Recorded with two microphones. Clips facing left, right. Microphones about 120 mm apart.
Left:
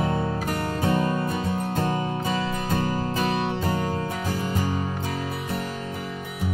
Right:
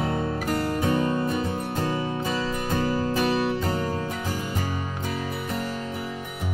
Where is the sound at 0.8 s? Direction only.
35° left (ahead or behind).